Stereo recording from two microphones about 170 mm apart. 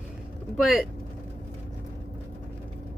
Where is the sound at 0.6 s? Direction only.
Centre (ahead or behind).